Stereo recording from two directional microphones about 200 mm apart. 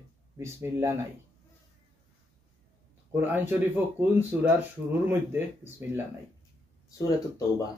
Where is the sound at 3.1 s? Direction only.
10° right (ahead or behind).